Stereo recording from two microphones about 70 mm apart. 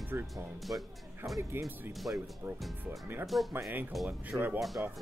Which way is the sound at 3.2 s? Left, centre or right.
Centre.